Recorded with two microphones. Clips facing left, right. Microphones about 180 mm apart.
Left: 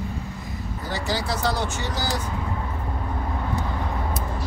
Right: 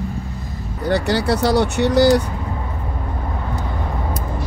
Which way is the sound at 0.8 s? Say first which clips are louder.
Right 10 dB; 65° right (ahead or behind).